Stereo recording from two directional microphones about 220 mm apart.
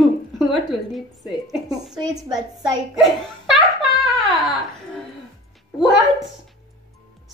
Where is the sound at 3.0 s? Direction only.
Centre (ahead or behind).